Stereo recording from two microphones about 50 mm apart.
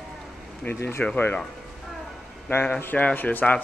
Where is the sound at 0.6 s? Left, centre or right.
Left.